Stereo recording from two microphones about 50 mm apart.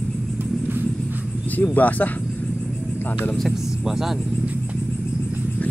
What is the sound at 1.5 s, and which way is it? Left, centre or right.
Speech, left.